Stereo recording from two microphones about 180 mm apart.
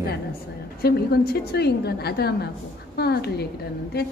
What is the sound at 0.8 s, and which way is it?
A woman's voice, 60° left (ahead or behind).